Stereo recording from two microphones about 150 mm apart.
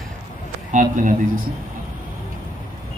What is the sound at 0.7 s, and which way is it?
Speech, 60° right (ahead or behind).